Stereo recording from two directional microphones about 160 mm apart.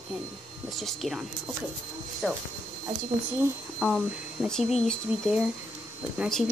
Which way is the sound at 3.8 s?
Centre (ahead or behind).